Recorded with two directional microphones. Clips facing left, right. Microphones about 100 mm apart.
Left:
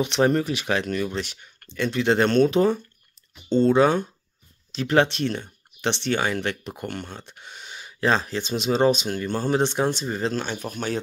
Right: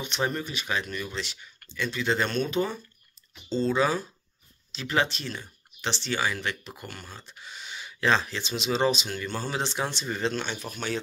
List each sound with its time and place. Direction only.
0.0 s speech: 75° left (ahead or behind)
3.4 s speech: 60° left (ahead or behind)